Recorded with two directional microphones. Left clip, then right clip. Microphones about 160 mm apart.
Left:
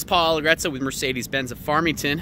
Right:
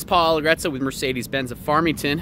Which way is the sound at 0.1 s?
5° right (ahead or behind).